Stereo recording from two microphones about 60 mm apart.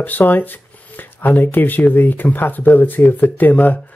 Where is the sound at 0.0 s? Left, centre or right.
Left.